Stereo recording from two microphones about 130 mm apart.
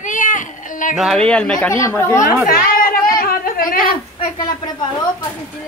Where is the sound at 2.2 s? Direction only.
90° left.